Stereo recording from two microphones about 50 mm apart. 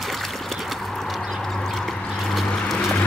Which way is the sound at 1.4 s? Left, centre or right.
Centre.